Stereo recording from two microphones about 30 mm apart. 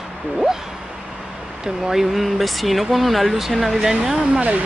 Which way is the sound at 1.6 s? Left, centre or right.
Centre.